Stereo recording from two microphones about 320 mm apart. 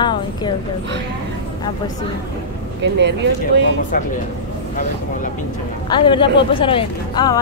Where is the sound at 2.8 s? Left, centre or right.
Right.